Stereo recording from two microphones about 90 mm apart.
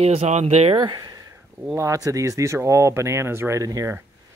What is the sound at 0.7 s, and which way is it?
Speech, 50° right (ahead or behind).